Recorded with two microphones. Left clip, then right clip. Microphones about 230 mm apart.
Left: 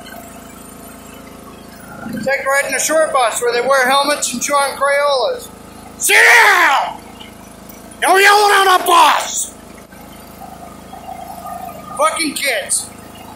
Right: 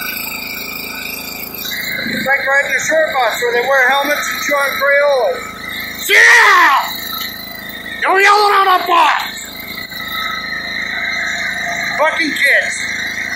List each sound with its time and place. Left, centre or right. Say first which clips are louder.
2.4 s a man's voice: right 2 dB; left
8.0 s speech: even; left
12.0 s speech: right 2 dB; centre